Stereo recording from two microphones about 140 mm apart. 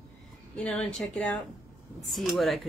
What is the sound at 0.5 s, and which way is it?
Speech, 10° left (ahead or behind).